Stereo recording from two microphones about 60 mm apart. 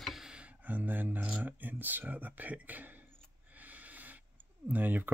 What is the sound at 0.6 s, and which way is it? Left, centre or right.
Speech, right.